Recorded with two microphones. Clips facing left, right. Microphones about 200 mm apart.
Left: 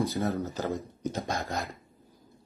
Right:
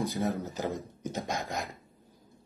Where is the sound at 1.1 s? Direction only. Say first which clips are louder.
Even; 15° right (ahead or behind).